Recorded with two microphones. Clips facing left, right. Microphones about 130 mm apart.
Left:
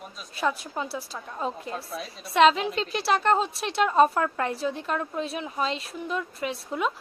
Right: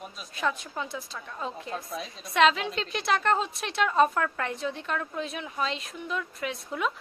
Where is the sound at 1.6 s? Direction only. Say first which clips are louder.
Left 1 dB; centre (ahead or behind).